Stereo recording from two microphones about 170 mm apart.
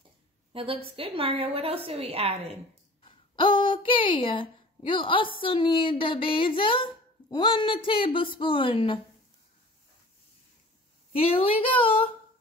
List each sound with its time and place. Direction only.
0.5 s a woman's voice: 35° right (ahead or behind)
3.1 s a sound: 30° left (ahead or behind)
5.4 s speech: 30° left (ahead or behind)
11.1 s speech: 35° left (ahead or behind)